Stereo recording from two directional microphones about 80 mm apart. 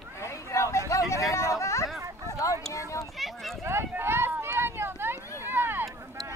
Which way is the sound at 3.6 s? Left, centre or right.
Right.